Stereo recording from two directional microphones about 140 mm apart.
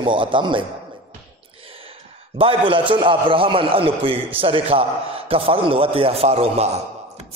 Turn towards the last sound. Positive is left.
turn(degrees=-45)  # may be behind; listen again after turning